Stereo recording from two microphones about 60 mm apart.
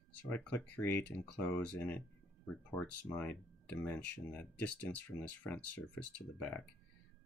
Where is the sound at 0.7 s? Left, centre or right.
Left.